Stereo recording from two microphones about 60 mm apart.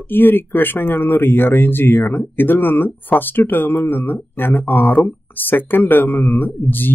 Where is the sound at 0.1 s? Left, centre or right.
Left.